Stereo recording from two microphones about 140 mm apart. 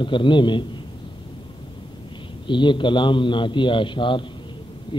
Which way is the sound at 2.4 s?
35° left (ahead or behind).